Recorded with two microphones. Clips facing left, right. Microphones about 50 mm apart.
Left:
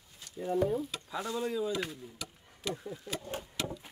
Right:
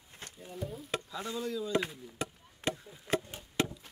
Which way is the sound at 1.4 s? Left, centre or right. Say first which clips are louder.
Left 3 dB; left.